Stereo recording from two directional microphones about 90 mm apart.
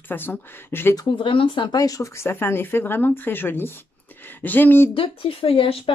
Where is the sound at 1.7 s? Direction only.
40° left (ahead or behind).